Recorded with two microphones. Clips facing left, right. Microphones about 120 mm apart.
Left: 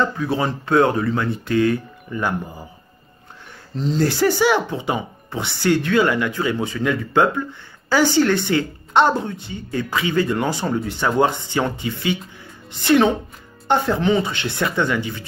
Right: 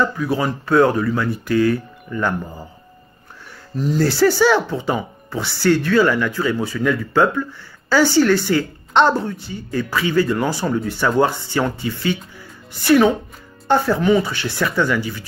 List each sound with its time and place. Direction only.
0.0 s speech: 25° left (ahead or behind)
3.7 s speech: 25° left (ahead or behind)